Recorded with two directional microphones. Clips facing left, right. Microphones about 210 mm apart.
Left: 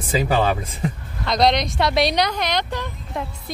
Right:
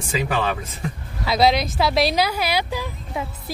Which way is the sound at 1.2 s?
5° right (ahead or behind).